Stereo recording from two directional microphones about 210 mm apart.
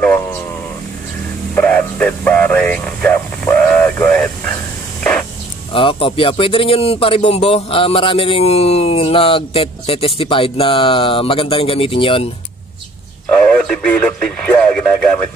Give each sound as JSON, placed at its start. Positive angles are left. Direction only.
{"t": 1.5, "sound": "vehicle", "side_deg": 10}
{"t": 5.7, "sound": "speech", "side_deg": 25}
{"t": 13.3, "sound": "speech", "side_deg": 5}